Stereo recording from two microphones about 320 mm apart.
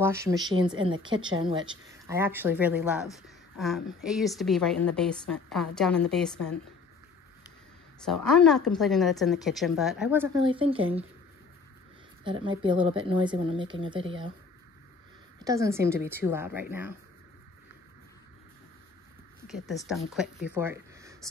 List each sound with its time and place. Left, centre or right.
0.0 s speech: centre
8.0 s speech: centre
12.3 s speech: centre
15.3 s speech: centre
20.2 s speech: centre